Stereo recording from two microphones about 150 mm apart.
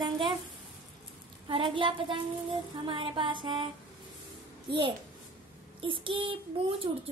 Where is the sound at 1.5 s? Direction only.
35° right (ahead or behind).